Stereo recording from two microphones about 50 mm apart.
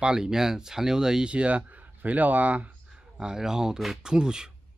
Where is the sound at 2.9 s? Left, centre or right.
Centre.